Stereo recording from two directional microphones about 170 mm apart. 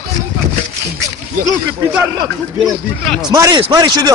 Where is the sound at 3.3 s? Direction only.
20° right (ahead or behind).